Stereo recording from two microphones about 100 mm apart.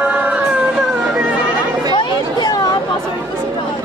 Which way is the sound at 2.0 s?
45° left (ahead or behind).